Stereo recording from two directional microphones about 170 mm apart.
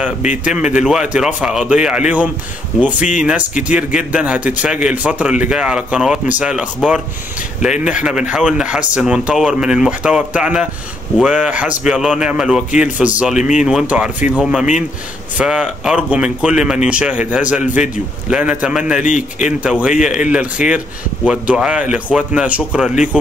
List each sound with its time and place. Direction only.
0.7 s a man's voice: 5° right (ahead or behind)
19.0 s speech: 45° left (ahead or behind)
19.4 s a man's voice: 5° right (ahead or behind)